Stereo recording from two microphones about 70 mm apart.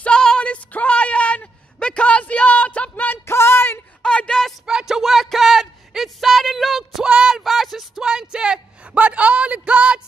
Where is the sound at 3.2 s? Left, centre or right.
Left.